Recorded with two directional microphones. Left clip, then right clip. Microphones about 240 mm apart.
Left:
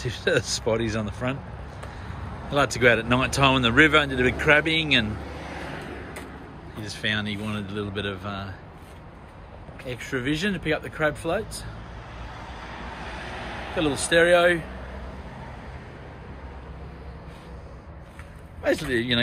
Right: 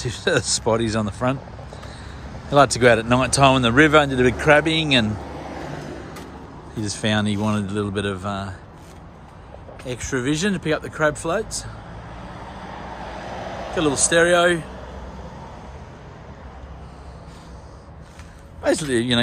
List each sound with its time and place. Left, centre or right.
0.0 s speech: centre
2.5 s speech: centre
5.2 s a sound: right
6.8 s speech: right
9.8 s speech: centre
12.2 s vehicle: right
13.7 s speech: centre
18.6 s speech: centre